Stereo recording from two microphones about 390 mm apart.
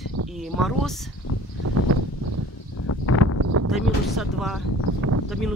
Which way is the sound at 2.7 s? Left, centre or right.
Left.